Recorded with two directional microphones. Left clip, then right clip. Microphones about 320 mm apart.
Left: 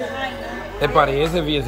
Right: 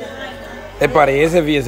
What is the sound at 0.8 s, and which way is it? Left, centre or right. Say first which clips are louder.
Speech: right 5 dB; centre.